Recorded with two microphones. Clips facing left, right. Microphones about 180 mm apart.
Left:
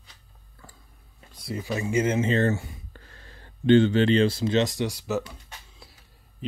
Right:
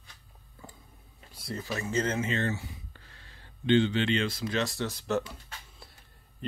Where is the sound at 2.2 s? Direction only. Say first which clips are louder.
Left 8 dB; 35° left (ahead or behind).